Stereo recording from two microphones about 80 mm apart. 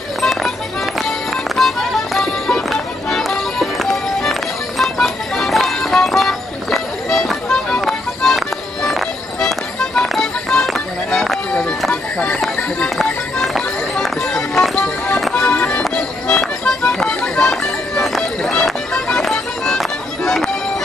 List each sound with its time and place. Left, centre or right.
0.2 s music: centre
1.6 s music: centre
12.4 s run: centre
12.9 s music: centre